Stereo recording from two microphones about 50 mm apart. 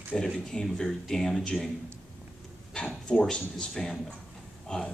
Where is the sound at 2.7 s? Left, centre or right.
Centre.